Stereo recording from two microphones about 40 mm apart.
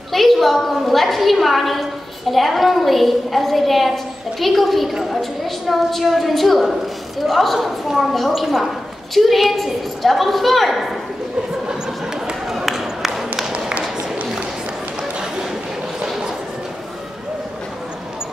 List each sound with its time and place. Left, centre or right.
0.1 s a woman's voice: centre
8.3 s a woman's voice: centre
12.4 s a sound: centre